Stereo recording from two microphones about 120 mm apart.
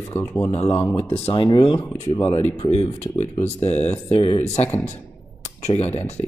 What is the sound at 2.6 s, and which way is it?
Speech, 60° left (ahead or behind).